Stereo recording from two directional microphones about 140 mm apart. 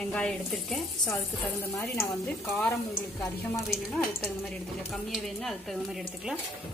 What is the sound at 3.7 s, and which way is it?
A woman's voice, centre (ahead or behind).